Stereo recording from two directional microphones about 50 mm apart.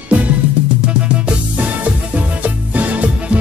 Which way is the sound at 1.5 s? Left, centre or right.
Right.